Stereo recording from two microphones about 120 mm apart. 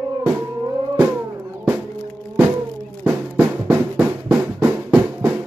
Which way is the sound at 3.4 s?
15° right (ahead or behind).